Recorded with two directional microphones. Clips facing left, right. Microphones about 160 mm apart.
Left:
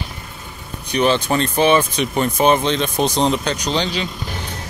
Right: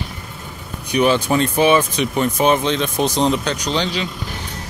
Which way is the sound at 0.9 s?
10° right (ahead or behind).